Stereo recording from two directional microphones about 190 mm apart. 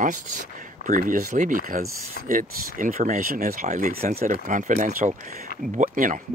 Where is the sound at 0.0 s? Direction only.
40° right (ahead or behind).